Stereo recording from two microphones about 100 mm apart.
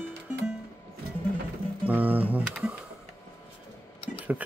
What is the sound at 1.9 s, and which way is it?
Speech, 15° right (ahead or behind).